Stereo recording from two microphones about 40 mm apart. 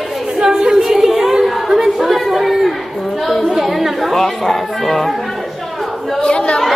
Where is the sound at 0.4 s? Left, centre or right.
Centre.